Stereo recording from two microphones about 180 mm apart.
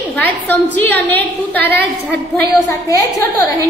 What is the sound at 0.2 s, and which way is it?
A woman's voice, 10° left (ahead or behind).